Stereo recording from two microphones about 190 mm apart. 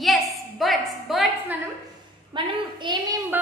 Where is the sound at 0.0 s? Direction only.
Centre (ahead or behind).